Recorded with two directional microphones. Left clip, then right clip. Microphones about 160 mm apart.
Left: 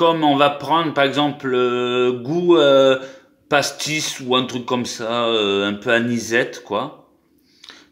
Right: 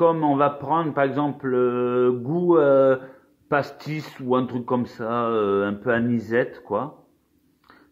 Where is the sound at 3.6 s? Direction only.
Centre (ahead or behind).